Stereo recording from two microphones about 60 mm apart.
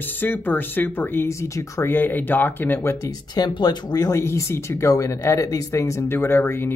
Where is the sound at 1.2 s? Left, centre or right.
Left.